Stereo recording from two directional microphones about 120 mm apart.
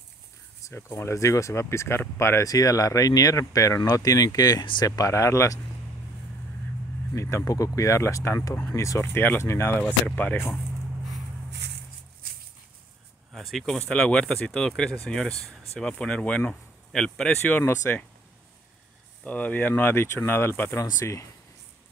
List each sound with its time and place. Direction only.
0.6 s speech: 25° left (ahead or behind)
7.2 s speech: 25° left (ahead or behind)
9.8 s speech: 10° left (ahead or behind)
13.3 s speech: centre (ahead or behind); by 17.7 s 15° left (ahead or behind)
19.2 s speech: 15° left (ahead or behind)